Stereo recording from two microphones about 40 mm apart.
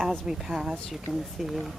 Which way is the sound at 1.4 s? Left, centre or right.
Centre.